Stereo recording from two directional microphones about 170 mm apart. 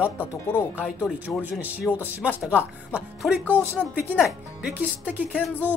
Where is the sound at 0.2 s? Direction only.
10° left (ahead or behind).